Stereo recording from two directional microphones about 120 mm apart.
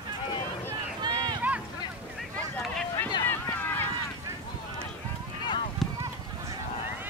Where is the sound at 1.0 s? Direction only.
35° right (ahead or behind).